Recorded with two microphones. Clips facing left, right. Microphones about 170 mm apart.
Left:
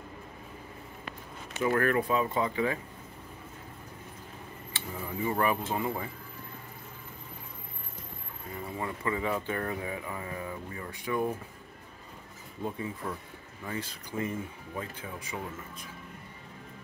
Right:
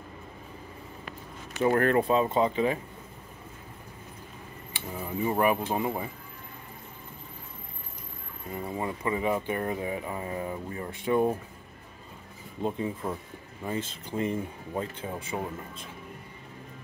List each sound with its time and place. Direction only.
1.6 s speech: 30° right (ahead or behind)
4.7 s a sound: 15° right (ahead or behind)
5.2 s speech: 20° right (ahead or behind)
8.7 s speech: 20° right (ahead or behind)
12.6 s speech: 25° right (ahead or behind)